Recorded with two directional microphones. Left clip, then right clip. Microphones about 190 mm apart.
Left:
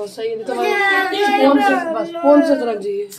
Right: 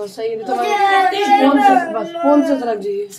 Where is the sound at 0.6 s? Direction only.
15° left (ahead or behind).